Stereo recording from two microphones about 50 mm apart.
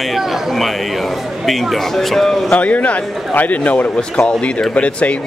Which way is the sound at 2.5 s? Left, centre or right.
Left.